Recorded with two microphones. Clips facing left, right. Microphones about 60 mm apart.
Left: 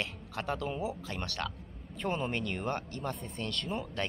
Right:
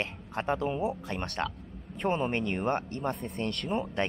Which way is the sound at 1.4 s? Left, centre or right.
Right.